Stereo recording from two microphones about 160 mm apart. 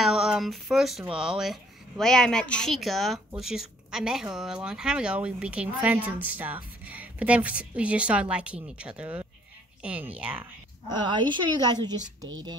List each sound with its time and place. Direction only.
0.0 s a sound: centre (ahead or behind)
1.1 s a woman's voice: 5° right (ahead or behind)
11.0 s a woman's voice: 30° right (ahead or behind)